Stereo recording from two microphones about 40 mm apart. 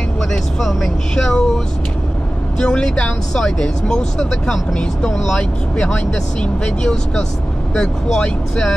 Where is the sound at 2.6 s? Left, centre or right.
Left.